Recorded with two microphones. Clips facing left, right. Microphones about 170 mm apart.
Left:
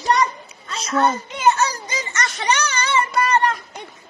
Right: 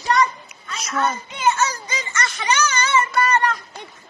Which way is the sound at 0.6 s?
30° left (ahead or behind).